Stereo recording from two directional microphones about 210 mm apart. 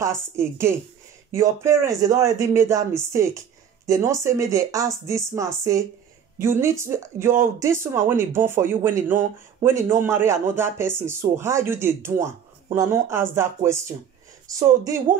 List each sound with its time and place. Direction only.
0.0 s speech: 10° right (ahead or behind)